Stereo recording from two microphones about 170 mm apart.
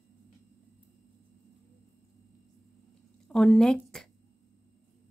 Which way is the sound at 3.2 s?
5° left (ahead or behind).